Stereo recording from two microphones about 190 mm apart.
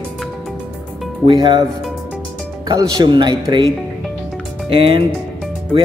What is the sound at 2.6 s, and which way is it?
Speech, 20° right (ahead or behind).